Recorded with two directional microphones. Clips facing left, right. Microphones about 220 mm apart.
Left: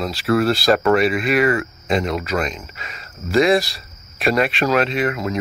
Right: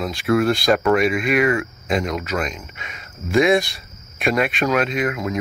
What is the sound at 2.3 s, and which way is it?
Speech, 40° left (ahead or behind).